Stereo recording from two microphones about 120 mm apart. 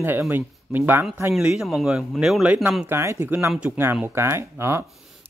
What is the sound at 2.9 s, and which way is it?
Speech, 20° right (ahead or behind).